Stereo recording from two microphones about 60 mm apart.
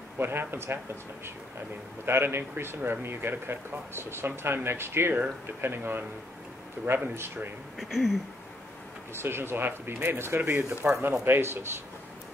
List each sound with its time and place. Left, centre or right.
0.2 s speech: right
2.0 s speech: right
7.2 s speech: right
7.9 s a sound: centre
9.1 s speech: right
10.7 s speech: right